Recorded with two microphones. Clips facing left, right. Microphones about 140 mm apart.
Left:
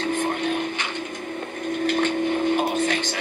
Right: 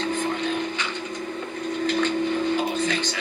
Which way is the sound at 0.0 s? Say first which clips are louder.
Left 1 dB; 60° left (ahead or behind).